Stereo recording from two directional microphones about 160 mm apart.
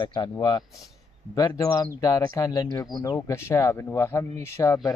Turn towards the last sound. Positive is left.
turn(degrees=20)  # may be behind; listen again after turning